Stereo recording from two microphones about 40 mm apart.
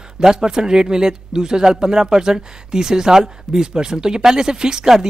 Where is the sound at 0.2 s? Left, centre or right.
Centre.